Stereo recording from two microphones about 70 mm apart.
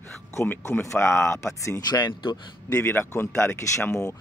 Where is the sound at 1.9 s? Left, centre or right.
Left.